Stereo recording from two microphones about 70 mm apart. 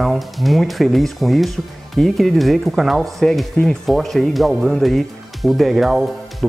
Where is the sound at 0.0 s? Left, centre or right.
Centre.